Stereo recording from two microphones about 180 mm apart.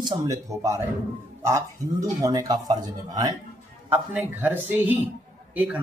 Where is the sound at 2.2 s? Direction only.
20° right (ahead or behind).